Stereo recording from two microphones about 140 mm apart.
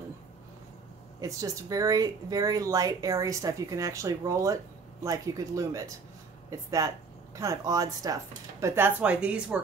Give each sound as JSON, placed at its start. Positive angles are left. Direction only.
{"t": 1.2, "sound": "speech", "side_deg": -25}